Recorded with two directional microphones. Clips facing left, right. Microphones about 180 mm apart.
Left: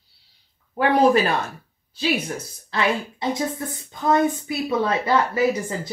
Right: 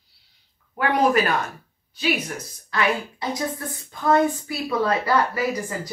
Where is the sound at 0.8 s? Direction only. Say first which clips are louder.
Left 3 dB; 30° left (ahead or behind).